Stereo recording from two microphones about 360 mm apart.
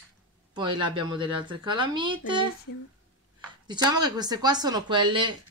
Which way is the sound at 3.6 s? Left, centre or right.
Centre.